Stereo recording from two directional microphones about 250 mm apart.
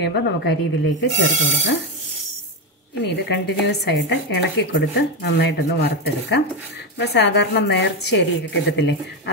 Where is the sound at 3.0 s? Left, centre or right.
Left.